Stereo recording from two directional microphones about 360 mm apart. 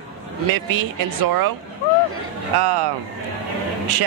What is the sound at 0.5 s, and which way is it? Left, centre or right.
Speech, right.